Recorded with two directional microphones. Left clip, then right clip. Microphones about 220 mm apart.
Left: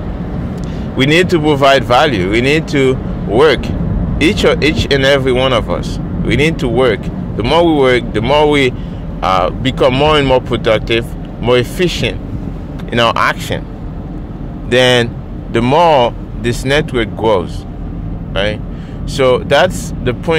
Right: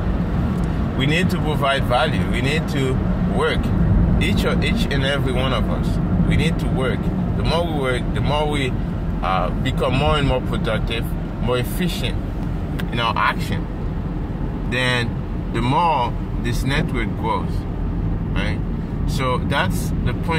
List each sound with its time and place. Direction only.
0.9 s speech: 45° left (ahead or behind)
14.7 s speech: 50° left (ahead or behind)